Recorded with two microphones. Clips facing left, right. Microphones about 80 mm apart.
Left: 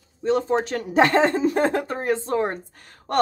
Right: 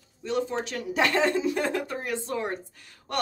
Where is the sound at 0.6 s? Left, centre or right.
Left.